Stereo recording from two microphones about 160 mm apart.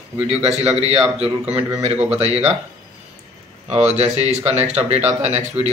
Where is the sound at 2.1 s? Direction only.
40° right (ahead or behind).